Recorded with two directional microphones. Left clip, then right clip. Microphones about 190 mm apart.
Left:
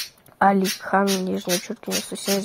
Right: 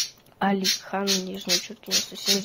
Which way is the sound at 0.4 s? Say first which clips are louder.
Left 6 dB; 45° left (ahead or behind).